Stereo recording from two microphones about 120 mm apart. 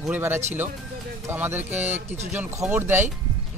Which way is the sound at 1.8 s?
70° right (ahead or behind).